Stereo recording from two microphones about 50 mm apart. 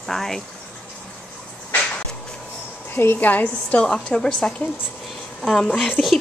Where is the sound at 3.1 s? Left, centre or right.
Left.